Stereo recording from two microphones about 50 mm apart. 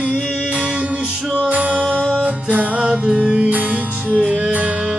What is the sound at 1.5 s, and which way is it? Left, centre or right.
Music, right.